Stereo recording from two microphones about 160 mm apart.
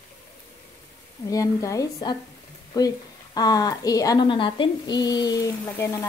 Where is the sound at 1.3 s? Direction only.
20° left (ahead or behind).